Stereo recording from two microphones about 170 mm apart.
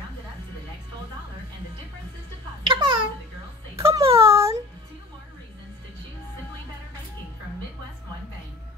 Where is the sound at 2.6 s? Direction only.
30° right (ahead or behind).